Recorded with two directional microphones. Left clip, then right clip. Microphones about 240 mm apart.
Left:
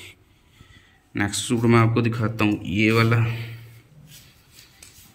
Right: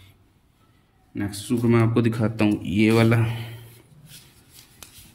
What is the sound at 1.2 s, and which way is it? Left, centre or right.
Speech, centre.